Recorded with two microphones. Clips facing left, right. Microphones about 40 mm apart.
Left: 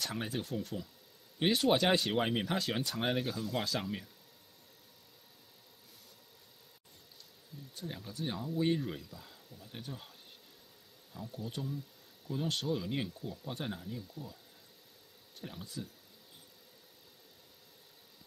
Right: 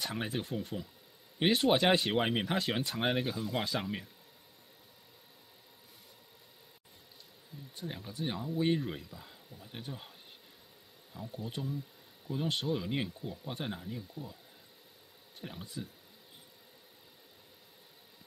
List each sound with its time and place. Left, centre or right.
0.0 s speech: centre
7.7 s speech: centre
11.1 s speech: centre
15.4 s speech: centre